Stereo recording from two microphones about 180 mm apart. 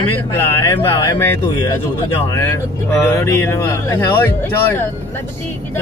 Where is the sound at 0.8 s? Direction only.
15° left (ahead or behind).